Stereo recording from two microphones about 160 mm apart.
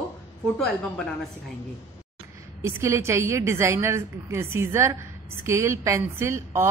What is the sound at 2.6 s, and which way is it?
A woman's voice, 20° right (ahead or behind).